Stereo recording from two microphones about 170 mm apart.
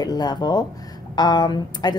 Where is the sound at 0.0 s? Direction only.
25° left (ahead or behind).